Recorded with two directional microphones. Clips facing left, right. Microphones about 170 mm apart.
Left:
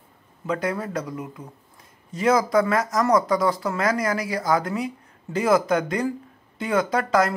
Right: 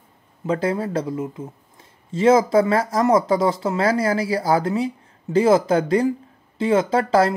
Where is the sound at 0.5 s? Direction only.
30° right (ahead or behind).